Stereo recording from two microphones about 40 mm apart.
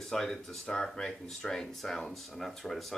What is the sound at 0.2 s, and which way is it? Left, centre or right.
Speech, centre.